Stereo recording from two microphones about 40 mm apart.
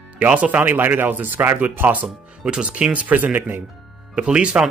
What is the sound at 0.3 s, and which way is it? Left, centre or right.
Speech, right.